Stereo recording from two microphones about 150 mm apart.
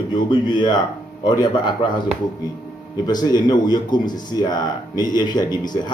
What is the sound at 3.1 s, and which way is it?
Speech, 25° left (ahead or behind).